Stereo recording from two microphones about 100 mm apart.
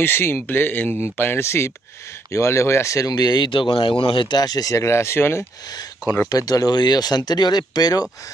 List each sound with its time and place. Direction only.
0.0 s speech: 25° left (ahead or behind)
6.2 s speech: 35° left (ahead or behind)